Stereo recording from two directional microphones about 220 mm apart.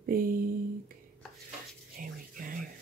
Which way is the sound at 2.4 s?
40° right (ahead or behind).